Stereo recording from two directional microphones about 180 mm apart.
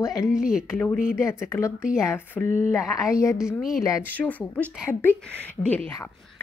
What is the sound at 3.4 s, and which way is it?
A woman's voice, centre (ahead or behind).